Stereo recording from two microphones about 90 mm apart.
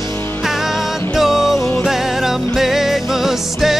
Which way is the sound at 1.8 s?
5° right (ahead or behind).